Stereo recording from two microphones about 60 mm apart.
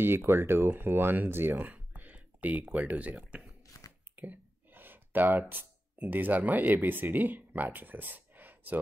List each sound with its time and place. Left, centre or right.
0.2 s speech: right; by 3.4 s centre
3.8 s a sound: left
4.2 s speech: right